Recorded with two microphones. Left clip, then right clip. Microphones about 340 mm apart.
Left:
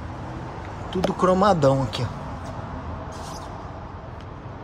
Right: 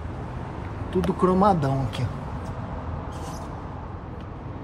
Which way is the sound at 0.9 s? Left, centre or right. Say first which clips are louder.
Left 2 dB; centre.